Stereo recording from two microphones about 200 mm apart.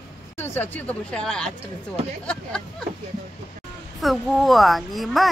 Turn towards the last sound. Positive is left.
turn(degrees=0)  # may be behind; listen again after turning